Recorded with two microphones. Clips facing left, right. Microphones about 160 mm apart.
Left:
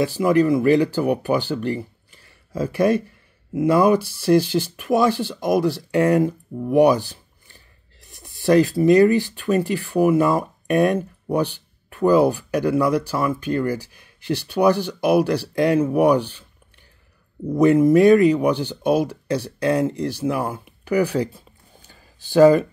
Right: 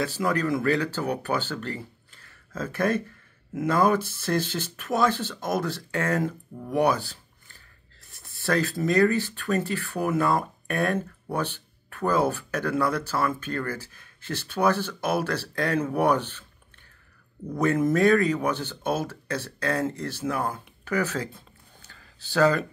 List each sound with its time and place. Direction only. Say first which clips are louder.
0.0 s speech: left 9 dB; 15° left (ahead or behind)
17.6 s speech: left 8 dB; 15° left (ahead or behind)